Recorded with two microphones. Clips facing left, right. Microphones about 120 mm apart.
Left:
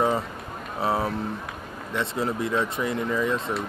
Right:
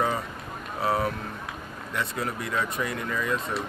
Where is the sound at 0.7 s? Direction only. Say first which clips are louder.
Left 1 dB; 25° left (ahead or behind).